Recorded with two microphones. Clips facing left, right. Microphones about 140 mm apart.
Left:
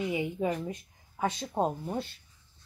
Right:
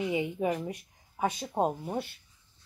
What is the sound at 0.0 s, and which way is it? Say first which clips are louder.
Speech: right 1 dB; 20° right (ahead or behind).